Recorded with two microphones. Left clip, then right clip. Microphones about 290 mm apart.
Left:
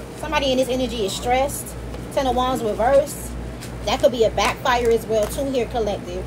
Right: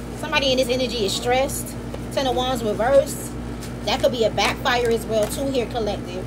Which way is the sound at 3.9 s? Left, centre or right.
Centre.